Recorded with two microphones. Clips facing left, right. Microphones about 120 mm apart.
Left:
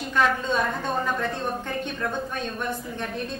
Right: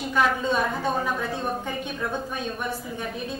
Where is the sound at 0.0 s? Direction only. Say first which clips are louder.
Even; 5° right (ahead or behind).